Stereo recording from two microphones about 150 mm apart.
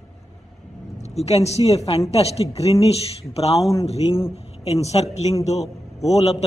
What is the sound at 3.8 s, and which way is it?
A man's voice, 40° left (ahead or behind).